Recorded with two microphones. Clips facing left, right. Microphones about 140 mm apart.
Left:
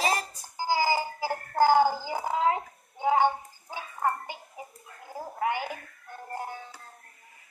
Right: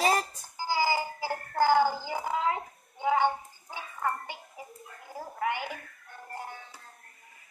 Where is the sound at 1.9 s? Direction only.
45° left (ahead or behind).